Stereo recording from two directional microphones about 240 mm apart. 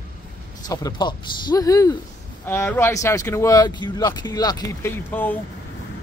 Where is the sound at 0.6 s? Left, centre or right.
Centre.